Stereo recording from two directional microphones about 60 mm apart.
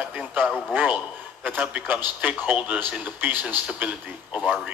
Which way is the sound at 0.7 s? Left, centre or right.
Right.